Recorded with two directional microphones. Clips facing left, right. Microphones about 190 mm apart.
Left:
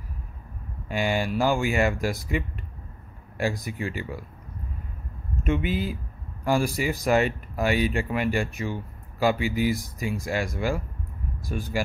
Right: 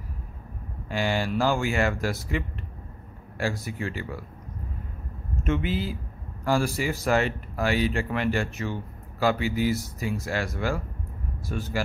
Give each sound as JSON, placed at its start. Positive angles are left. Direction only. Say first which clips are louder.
{"t": 0.8, "sound": "speech", "louder": "left 1 dB", "side_deg": 15}
{"t": 5.3, "sound": "speech", "louder": "left 1 dB", "side_deg": 15}